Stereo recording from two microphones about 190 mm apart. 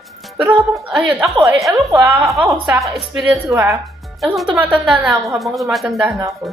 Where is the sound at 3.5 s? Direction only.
15° right (ahead or behind).